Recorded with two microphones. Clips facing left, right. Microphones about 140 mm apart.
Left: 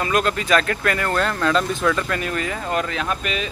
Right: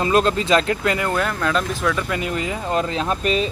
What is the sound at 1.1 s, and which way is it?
Speech, 5° right (ahead or behind).